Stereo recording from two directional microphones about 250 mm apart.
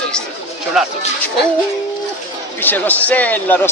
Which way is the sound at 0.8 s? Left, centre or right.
Centre.